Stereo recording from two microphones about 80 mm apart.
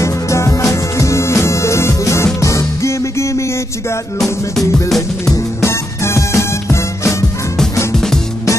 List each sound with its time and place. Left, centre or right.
0.0 s music: left
4.8 s music: centre
5.3 s music: left
7.9 s music: centre